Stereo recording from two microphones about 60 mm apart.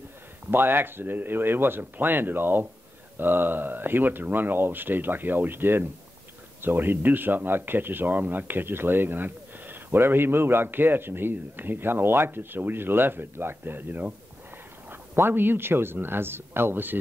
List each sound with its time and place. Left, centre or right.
0.5 s speech: right